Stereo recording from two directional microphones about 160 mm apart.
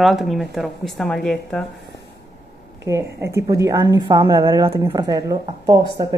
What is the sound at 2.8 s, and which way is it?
A woman's voice, 20° right (ahead or behind).